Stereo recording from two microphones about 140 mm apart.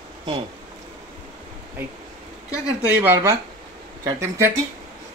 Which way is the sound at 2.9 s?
15° right (ahead or behind).